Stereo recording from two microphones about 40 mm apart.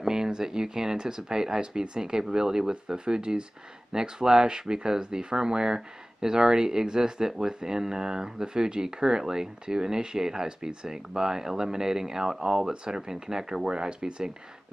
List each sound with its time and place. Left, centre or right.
0.0 s speech: centre